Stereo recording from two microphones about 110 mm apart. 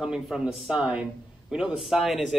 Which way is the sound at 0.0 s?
5° right (ahead or behind).